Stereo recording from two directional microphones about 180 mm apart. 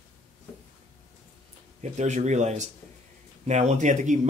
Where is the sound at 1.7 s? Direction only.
40° right (ahead or behind).